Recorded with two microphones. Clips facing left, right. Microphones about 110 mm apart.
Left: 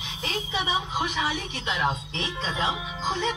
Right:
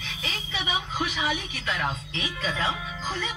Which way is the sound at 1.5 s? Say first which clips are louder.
Left 3 dB; 25° left (ahead or behind).